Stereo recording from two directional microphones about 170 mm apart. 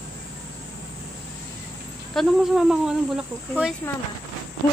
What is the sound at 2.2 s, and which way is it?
Speech, centre (ahead or behind).